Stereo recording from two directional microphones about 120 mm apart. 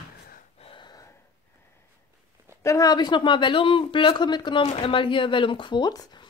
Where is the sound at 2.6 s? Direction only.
25° left (ahead or behind).